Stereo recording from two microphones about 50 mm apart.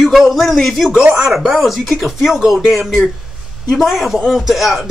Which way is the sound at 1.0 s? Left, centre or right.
Centre.